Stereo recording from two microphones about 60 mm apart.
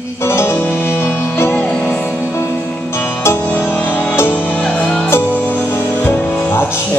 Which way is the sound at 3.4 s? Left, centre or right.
Left.